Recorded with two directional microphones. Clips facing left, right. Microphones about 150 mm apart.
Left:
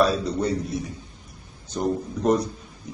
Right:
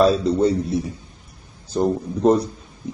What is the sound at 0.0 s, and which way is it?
A man's voice, 25° right (ahead or behind).